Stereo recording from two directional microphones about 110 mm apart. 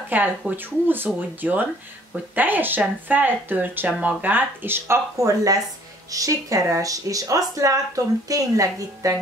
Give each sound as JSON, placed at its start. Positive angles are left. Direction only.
{"t": 0.1, "sound": "speech", "side_deg": -15}